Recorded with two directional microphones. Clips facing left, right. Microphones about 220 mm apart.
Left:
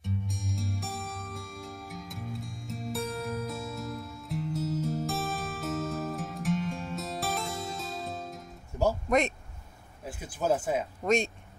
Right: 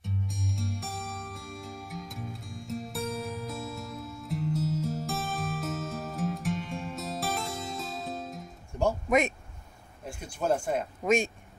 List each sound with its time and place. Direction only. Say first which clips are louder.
0.0 s music: even; centre (ahead or behind)
10.0 s speech: even; 5° left (ahead or behind)